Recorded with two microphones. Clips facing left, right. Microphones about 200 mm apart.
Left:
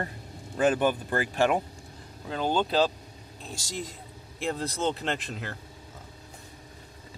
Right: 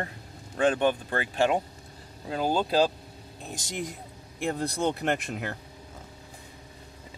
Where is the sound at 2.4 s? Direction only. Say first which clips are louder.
Right 1 dB; 10° right (ahead or behind).